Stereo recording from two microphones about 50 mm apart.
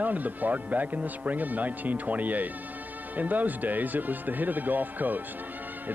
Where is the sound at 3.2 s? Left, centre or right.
Right.